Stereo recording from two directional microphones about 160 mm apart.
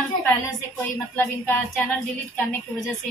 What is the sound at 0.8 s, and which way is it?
Speech, 10° left (ahead or behind).